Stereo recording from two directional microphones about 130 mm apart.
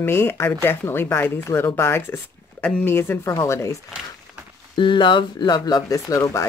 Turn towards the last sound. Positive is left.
turn(degrees=25)  # may be behind; listen again after turning